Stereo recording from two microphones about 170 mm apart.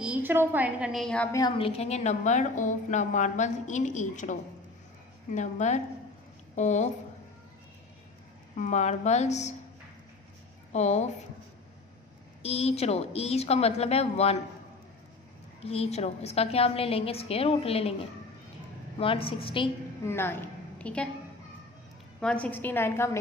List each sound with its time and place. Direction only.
0.0 s a woman's voice: 10° right (ahead or behind)
1.3 s a woman's voice: 25° left (ahead or behind); by 6.9 s 45° left (ahead or behind)
8.5 s a woman's voice: 45° left (ahead or behind)
10.7 s a woman's voice: 40° left (ahead or behind)
12.4 s a woman's voice: 35° left (ahead or behind)
15.6 s a woman's voice: 35° left (ahead or behind)
18.9 s a woman's voice: 35° left (ahead or behind)
20.1 s a woman's voice: 15° left (ahead or behind)
22.2 s a woman's voice: 5° left (ahead or behind)